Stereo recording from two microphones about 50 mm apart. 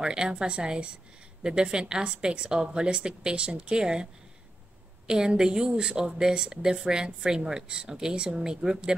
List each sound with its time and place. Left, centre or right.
0.0 s a woman's voice: centre